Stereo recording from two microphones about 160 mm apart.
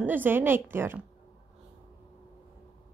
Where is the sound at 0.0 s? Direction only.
10° right (ahead or behind).